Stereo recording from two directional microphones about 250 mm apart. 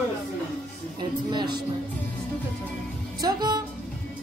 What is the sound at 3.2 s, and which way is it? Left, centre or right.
Speech, centre.